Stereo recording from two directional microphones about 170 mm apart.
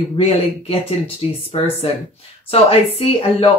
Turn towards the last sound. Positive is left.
turn(degrees=35)  # may be behind; listen again after turning